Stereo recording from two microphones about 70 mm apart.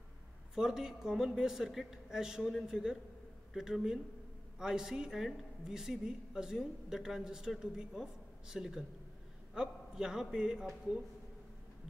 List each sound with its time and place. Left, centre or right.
0.6 s a woman's voice: centre